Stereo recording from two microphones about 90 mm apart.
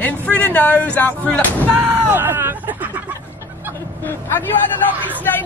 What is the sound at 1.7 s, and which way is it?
Speech, 20° right (ahead or behind).